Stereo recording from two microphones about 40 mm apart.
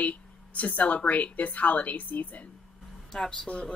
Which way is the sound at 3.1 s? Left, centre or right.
Centre.